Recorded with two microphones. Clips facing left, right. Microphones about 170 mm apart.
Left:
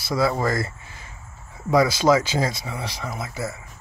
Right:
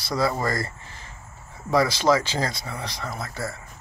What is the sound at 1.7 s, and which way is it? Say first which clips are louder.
Speech: left 3 dB; 10° left (ahead or behind).